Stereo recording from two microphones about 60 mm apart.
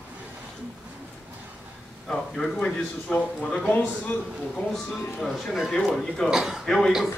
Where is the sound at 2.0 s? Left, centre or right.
Centre.